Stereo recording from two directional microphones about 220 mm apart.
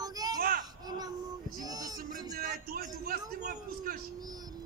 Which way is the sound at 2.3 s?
40° right (ahead or behind).